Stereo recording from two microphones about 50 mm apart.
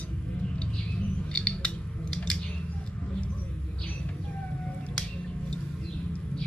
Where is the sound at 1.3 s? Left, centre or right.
Left.